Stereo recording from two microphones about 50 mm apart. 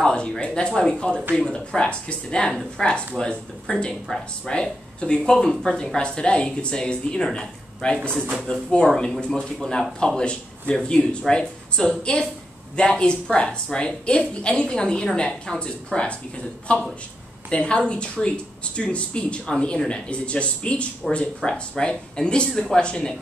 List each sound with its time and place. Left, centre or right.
0.0 s a woman's voice: centre
5.9 s a woman's voice: centre
22.5 s speech: centre
22.8 s a woman's voice: centre